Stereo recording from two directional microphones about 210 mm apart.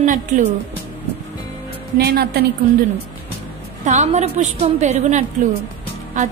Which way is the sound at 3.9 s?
35° right (ahead or behind).